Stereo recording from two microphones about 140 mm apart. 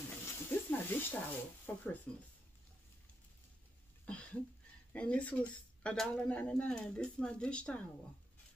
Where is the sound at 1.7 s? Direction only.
15° left (ahead or behind).